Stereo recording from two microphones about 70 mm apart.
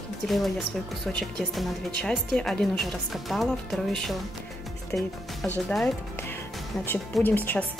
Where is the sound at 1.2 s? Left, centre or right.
Centre.